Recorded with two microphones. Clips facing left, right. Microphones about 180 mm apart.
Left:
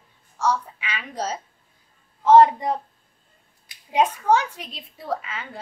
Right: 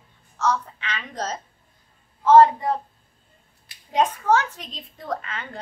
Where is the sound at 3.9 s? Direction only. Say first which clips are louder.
Left 1 dB; 10° left (ahead or behind).